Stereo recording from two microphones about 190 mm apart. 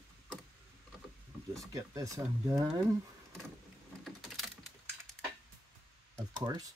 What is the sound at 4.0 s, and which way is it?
Typing, centre (ahead or behind).